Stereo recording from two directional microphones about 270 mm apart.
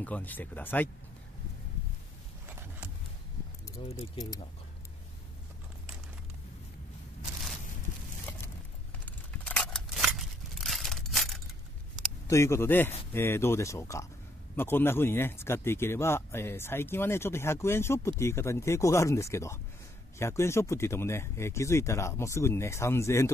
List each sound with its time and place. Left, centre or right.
0.0 s speech: centre
4.0 s speech: centre
9.0 s a sound: centre
12.3 s speech: centre